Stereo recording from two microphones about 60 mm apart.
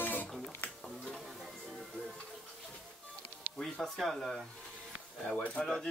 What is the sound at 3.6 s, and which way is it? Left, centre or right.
Speech, centre.